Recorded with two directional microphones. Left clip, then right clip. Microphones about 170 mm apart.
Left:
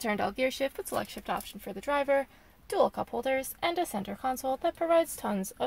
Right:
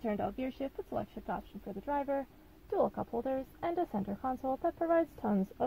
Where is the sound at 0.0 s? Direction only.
15° left (ahead or behind).